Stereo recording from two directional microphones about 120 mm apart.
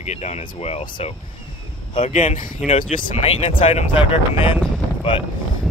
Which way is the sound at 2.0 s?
80° left.